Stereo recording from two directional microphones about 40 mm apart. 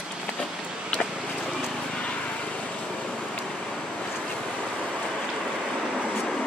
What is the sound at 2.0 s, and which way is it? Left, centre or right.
Vehicle, left.